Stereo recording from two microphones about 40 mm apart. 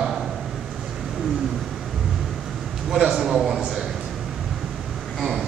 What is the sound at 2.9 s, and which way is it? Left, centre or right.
Speech, centre.